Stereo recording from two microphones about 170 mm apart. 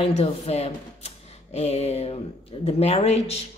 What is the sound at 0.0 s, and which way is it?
Speech, 35° left (ahead or behind).